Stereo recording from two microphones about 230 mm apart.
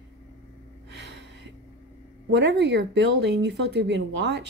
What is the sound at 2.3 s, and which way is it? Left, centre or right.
A woman's voice, right.